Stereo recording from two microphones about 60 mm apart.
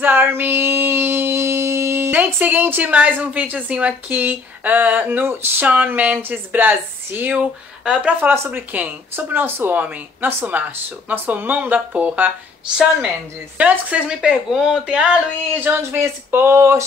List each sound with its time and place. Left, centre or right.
0.0 s a sound: right
2.0 s a sound: right
2.8 s speech: right
7.3 s speech: centre
8.2 s speech: right
13.6 s speech: right
15.8 s speech: right
16.5 s speech: right